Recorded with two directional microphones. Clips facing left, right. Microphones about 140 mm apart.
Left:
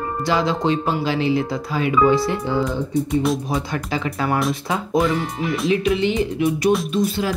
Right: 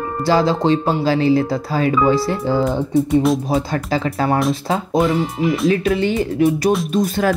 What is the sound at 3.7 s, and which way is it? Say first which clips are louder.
Speech: right 4 dB; 35° right (ahead or behind).